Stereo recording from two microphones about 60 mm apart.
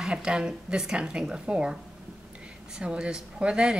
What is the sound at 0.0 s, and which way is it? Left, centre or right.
Speech, centre.